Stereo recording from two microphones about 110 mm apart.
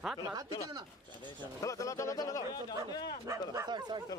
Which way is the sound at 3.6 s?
40° right (ahead or behind).